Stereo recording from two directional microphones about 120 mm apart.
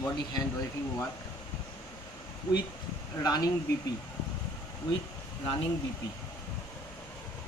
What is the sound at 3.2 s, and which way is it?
Speech, 30° left (ahead or behind).